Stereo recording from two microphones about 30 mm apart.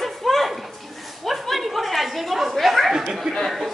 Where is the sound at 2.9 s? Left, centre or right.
Centre.